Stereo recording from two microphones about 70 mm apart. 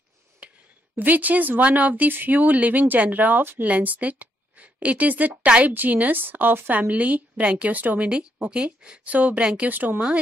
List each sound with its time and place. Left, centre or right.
0.4 s a sound: centre
0.9 s a woman's voice: right
9.7 s a woman's voice: right